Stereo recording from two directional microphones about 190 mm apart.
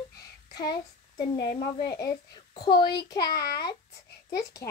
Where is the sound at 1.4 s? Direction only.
30° left (ahead or behind).